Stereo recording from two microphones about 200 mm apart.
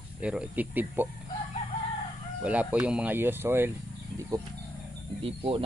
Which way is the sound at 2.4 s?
5° right (ahead or behind).